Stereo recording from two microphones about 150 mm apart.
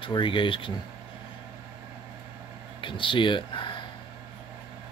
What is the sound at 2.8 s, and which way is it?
Speech, 35° left (ahead or behind).